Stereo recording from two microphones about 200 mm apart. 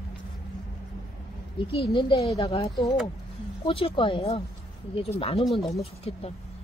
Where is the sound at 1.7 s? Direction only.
25° left (ahead or behind).